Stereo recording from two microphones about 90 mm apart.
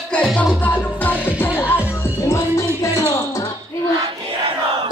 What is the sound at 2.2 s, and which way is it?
Music, 35° left (ahead or behind).